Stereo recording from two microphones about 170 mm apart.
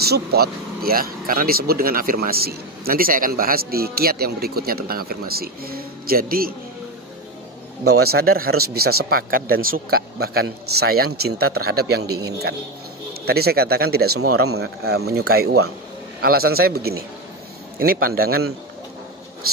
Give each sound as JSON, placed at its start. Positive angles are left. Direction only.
{"t": 0.0, "sound": "speech", "side_deg": -70}
{"t": 7.8, "sound": "a man's voice", "side_deg": -65}